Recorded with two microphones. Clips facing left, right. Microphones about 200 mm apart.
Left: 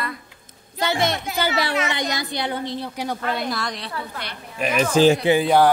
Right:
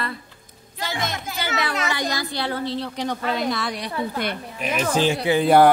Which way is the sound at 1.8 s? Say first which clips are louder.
Even; 20° left (ahead or behind).